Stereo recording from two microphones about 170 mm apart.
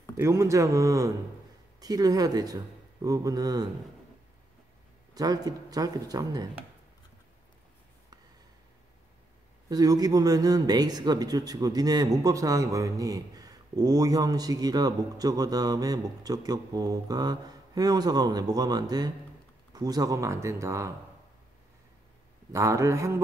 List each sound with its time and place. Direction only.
0.2 s speech: 15° right (ahead or behind)
5.1 s speech: 25° right (ahead or behind)
9.7 s speech: 20° right (ahead or behind)
22.5 s speech: 20° right (ahead or behind)